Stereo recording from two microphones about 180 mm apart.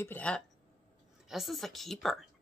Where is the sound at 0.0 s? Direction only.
10° left (ahead or behind).